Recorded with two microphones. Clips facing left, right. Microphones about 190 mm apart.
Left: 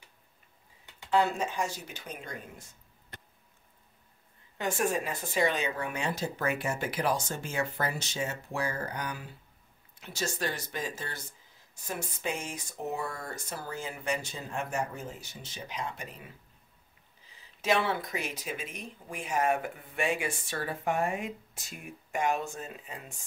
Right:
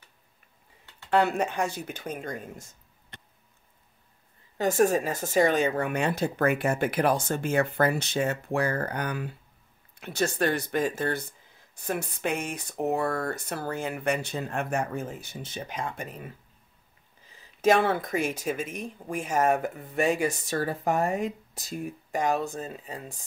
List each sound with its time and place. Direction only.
1.1 s speech: 65° right (ahead or behind); by 2.6 s 45° right (ahead or behind)
4.6 s speech: 40° right (ahead or behind)
17.6 s speech: 45° right (ahead or behind)